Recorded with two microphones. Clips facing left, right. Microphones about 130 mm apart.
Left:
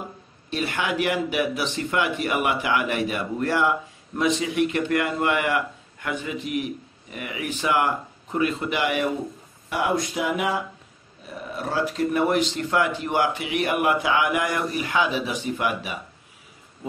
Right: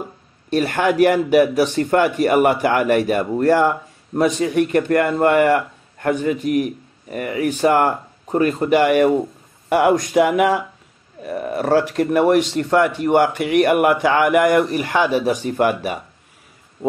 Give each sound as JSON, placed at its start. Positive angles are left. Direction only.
{"t": 0.5, "sound": "a man's voice", "side_deg": -45}